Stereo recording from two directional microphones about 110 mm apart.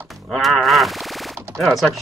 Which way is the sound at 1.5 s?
Centre (ahead or behind).